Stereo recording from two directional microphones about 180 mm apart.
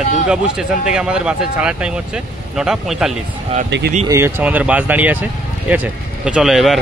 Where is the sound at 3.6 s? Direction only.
75° right (ahead or behind).